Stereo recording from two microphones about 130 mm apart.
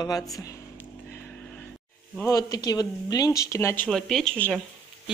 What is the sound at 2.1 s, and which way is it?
Speech, 25° left (ahead or behind).